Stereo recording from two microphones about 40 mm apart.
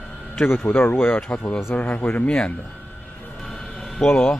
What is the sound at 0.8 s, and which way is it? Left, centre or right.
Speech, left.